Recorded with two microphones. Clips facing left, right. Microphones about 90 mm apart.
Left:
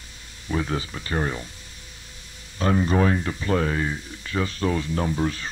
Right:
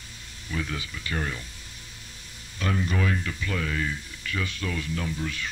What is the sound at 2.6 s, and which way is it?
Speech, 35° left (ahead or behind).